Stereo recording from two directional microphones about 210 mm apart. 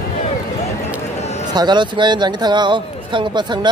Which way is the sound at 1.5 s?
20° right (ahead or behind).